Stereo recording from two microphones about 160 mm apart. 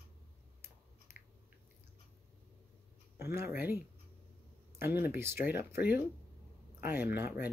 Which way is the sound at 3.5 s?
15° right (ahead or behind).